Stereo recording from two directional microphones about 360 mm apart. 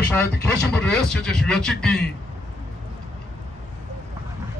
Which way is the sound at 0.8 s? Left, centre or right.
Centre.